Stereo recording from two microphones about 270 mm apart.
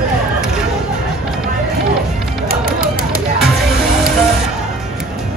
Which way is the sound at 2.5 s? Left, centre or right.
Right.